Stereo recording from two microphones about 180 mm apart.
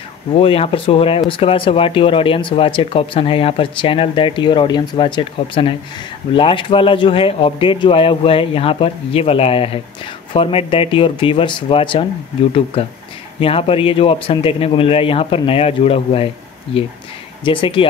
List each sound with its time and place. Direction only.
0.4 s a man's voice: 30° left (ahead or behind)
17.5 s speech: 30° left (ahead or behind)